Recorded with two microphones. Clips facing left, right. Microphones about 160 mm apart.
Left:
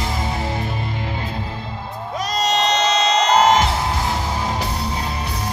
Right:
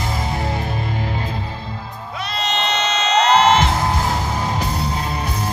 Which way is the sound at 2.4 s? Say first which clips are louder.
Left 3 dB; 40° left (ahead or behind).